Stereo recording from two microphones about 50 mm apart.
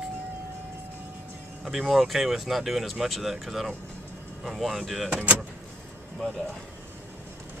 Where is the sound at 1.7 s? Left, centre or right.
Centre.